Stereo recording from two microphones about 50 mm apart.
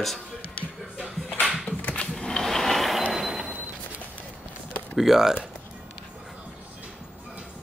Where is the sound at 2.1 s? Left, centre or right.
Centre.